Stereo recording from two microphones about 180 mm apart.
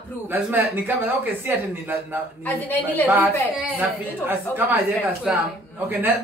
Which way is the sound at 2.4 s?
10° left (ahead or behind).